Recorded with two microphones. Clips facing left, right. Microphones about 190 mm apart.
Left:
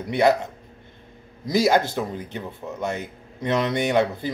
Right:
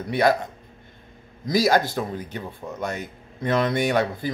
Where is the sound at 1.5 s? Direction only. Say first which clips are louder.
Left 1 dB; 20° left (ahead or behind).